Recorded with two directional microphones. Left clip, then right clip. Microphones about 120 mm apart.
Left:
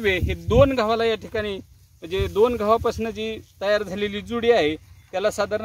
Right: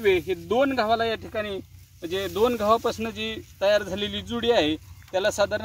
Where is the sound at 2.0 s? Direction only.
45° left (ahead or behind).